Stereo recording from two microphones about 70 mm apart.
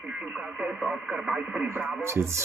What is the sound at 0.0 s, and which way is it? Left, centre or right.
Radio, centre.